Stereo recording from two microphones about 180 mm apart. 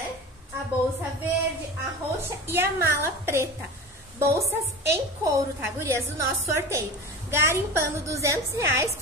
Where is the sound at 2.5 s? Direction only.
15° right (ahead or behind).